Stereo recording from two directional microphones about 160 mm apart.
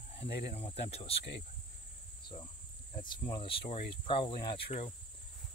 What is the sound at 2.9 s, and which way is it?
Speech, 30° left (ahead or behind).